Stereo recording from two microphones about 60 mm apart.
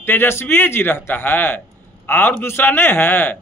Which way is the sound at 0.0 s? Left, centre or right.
Left.